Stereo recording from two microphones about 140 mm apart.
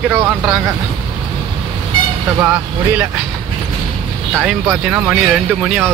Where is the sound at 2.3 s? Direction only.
15° right (ahead or behind).